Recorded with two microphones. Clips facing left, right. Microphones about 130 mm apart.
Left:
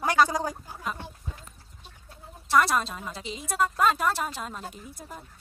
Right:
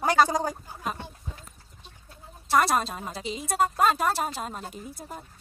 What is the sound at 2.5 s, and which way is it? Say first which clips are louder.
A woman's voice: even; 40° right (ahead or behind).